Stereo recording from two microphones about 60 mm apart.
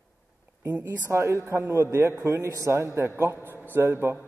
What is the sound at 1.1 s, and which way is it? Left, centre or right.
A man's voice, right.